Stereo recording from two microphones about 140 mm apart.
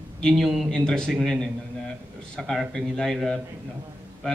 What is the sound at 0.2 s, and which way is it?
A man's voice, centre (ahead or behind).